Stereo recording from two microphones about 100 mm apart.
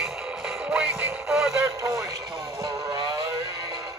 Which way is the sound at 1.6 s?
30° right (ahead or behind).